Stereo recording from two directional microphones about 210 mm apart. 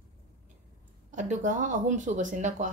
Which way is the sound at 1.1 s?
35° right (ahead or behind).